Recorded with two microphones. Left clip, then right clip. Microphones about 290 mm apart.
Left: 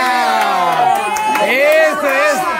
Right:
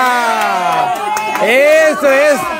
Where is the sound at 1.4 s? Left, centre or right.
Centre.